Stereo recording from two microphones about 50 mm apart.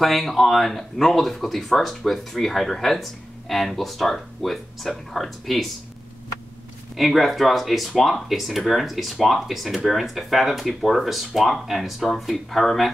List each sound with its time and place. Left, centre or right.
0.0 s speech: centre
7.0 s speech: centre